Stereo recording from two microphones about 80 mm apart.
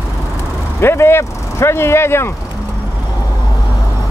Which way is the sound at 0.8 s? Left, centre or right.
Left.